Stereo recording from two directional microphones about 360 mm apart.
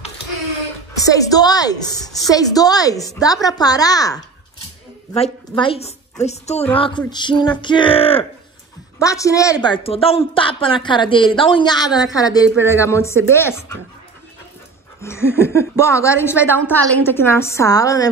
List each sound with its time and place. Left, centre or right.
1.0 s a woman's voice: centre
5.5 s a woman's voice: centre
15.0 s a woman's voice: centre